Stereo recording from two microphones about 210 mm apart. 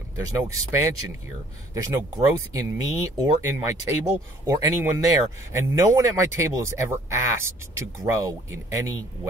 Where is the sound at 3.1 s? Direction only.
20° right (ahead or behind).